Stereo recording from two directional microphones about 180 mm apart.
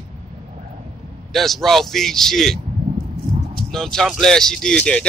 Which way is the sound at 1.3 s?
Centre (ahead or behind).